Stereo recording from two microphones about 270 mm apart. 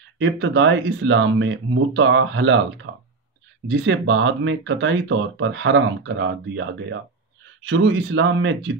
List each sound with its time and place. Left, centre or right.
0.2 s speech: right